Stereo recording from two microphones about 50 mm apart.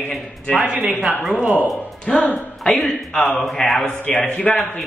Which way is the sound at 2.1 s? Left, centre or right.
Left.